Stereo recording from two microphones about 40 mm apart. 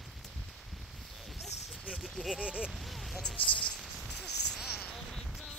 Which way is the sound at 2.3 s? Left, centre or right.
Right.